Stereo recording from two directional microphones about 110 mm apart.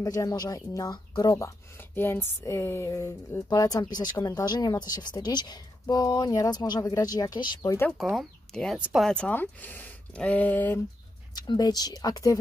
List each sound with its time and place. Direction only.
0.0 s speech: 30° left (ahead or behind)
1.8 s speech: 20° left (ahead or behind); by 7.7 s 35° left (ahead or behind)
8.0 s speech: 5° right (ahead or behind)
8.7 s speech: 10° right (ahead or behind)
9.0 s speech: 10° left (ahead or behind)
11.3 s speech: 40° left (ahead or behind)